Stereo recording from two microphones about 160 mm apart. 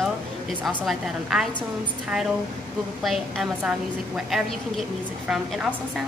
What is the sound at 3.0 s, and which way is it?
A woman's voice, centre (ahead or behind).